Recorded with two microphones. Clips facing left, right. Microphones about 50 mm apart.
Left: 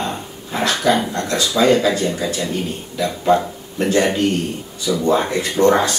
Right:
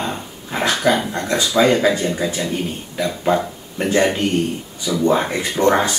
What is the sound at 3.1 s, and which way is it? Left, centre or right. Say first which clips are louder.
Speech: left 3 dB; centre.